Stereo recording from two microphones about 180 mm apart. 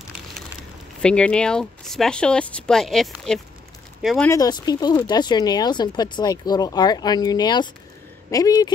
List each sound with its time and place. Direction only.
1.0 s speech: 5° left (ahead or behind)
4.2 s speech: 20° left (ahead or behind)